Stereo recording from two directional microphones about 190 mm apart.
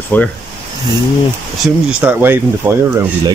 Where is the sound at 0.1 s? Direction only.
10° left (ahead or behind).